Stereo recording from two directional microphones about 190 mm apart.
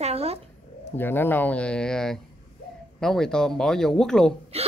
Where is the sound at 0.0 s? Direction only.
35° right (ahead or behind).